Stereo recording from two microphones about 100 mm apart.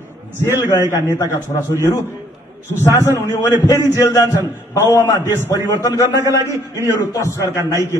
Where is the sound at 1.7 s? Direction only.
25° left (ahead or behind).